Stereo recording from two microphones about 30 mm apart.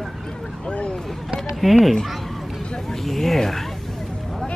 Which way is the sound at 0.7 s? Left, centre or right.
Left.